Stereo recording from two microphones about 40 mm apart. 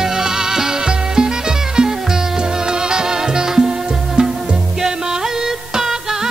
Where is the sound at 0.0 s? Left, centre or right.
Centre.